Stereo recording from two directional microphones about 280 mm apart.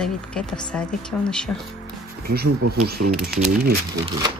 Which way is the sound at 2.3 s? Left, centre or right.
Right.